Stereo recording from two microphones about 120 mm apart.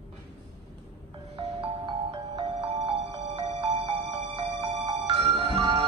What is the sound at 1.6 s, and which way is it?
Music, 55° right (ahead or behind).